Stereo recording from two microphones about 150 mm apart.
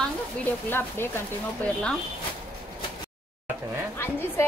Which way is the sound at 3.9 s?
15° left (ahead or behind).